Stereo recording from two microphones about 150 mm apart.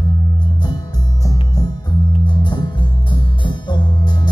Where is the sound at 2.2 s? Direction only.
30° left (ahead or behind).